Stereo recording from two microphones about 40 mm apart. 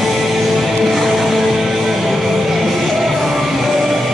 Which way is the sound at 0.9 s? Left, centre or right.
Centre.